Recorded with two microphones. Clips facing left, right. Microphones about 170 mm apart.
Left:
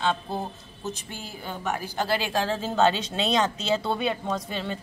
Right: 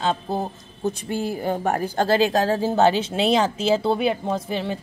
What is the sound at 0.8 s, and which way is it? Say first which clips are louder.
Speech: right 11 dB; 55° right (ahead or behind).